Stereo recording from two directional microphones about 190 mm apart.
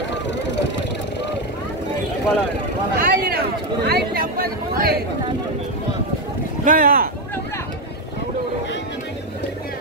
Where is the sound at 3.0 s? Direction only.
50° right (ahead or behind).